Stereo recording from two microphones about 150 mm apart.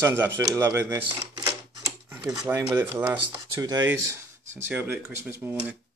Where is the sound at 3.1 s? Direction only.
25° right (ahead or behind).